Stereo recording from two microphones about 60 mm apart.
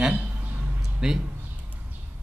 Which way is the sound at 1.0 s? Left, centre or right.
Centre.